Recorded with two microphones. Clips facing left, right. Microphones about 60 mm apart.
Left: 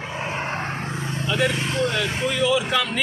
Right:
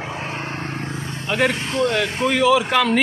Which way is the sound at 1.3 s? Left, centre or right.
Right.